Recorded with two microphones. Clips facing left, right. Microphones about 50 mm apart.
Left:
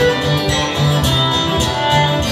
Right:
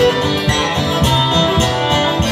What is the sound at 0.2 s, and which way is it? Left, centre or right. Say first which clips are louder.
Music: right 1 dB; right.